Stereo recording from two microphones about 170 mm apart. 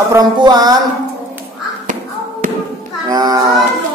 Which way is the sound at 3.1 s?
20° right (ahead or behind).